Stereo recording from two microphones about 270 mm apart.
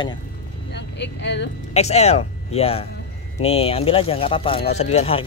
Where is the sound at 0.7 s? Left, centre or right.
Left.